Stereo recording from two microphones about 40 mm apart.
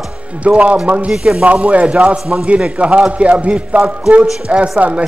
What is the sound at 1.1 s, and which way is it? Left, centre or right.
Speech, centre.